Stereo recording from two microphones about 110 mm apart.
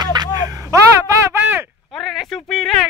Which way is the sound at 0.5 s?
25° right (ahead or behind).